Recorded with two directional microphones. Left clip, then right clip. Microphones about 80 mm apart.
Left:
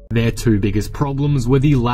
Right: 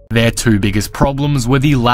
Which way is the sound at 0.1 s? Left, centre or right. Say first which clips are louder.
Right 5 dB; right.